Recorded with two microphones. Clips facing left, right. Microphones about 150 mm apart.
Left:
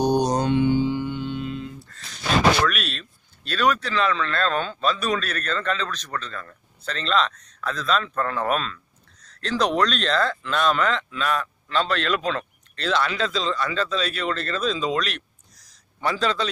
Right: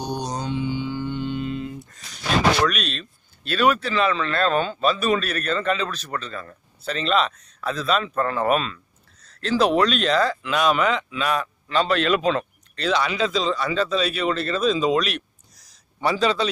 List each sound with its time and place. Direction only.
0.0 s mantra: 45° left (ahead or behind); by 0.7 s 60° left (ahead or behind)
1.0 s mantra: centre (ahead or behind)
2.7 s speech: centre (ahead or behind)